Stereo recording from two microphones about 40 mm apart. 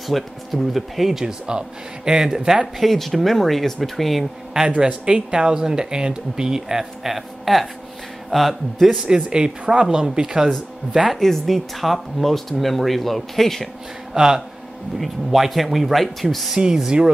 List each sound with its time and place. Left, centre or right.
0.1 s speech: centre
1.5 s a man's voice: centre
2.8 s speech: centre
4.6 s speech: right; by 9.0 s centre
9.0 s speech: centre
11.1 s speech: centre
14.1 s speech: centre
15.0 s speech: centre
16.5 s speech: centre